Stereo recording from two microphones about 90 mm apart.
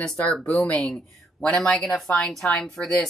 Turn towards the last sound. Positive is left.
turn(degrees=5)  # may be behind; listen again after turning